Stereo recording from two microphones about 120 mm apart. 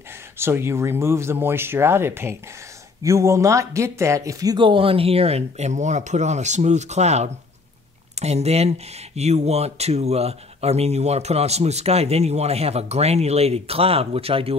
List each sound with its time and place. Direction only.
0.4 s speech: 20° right (ahead or behind)
4.6 s speech: 50° right (ahead or behind)